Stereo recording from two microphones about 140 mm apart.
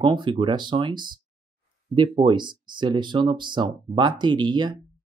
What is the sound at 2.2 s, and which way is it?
Speech, 35° right (ahead or behind).